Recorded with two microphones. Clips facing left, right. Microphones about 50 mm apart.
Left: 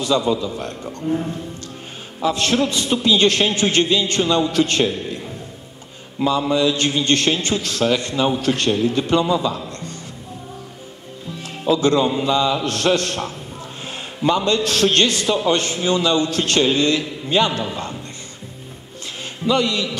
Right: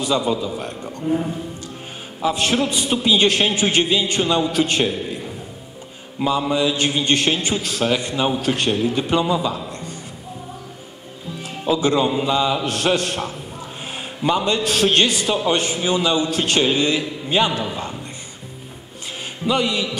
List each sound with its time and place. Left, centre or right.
0.0 s a man's voice: centre
11.6 s a man's voice: centre
19.4 s a man's voice: centre